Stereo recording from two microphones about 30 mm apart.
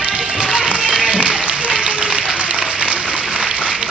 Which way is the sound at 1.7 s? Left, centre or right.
Right.